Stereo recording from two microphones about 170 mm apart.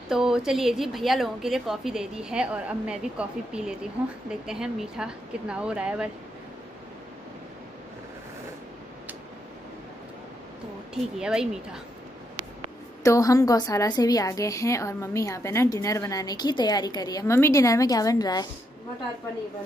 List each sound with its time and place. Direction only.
0.1 s a woman's voice: 5° right (ahead or behind)
11.1 s a woman's voice: 5° right (ahead or behind)
13.0 s a woman's voice: 20° left (ahead or behind)